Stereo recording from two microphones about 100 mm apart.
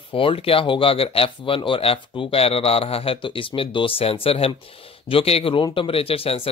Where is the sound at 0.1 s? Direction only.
65° left (ahead or behind).